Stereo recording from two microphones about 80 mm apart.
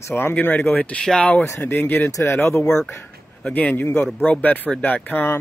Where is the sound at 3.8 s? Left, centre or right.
Left.